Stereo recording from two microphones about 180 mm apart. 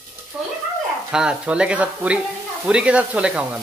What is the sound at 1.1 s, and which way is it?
Frying, 5° right (ahead or behind).